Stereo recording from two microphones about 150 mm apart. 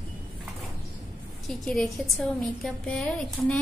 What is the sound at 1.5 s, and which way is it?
A woman's voice, centre (ahead or behind).